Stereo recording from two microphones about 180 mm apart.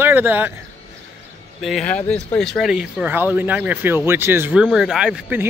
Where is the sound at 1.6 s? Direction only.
5° left (ahead or behind).